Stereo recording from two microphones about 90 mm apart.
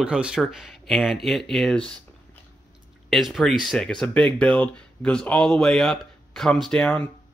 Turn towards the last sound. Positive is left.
turn(degrees=5)  # may be behind; listen again after turning